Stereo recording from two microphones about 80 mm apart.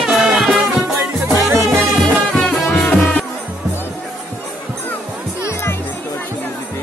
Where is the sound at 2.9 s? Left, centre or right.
Left.